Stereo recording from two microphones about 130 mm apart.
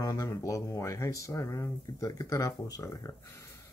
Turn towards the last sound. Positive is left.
turn(degrees=25)  # may be behind; listen again after turning